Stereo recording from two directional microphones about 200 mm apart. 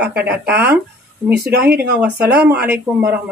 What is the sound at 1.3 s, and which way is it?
Speech, 55° right (ahead or behind).